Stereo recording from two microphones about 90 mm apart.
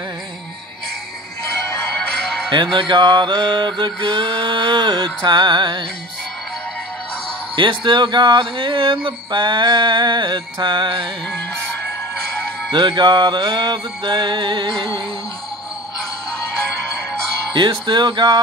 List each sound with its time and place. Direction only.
2.5 s speech: 60° right (ahead or behind)
7.5 s speech: 65° right (ahead or behind)
12.7 s speech: 60° right (ahead or behind)
17.6 s speech: 60° right (ahead or behind)